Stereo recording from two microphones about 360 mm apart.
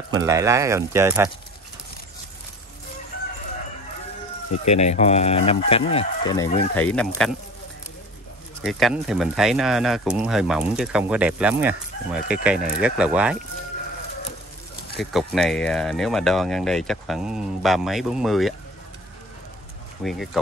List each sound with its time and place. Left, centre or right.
0.1 s speech: centre
4.6 s speech: centre
8.6 s speech: centre
15.0 s speech: centre
20.0 s speech: centre